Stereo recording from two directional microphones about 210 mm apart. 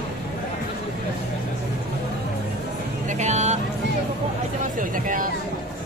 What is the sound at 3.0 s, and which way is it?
Music, 35° right (ahead or behind).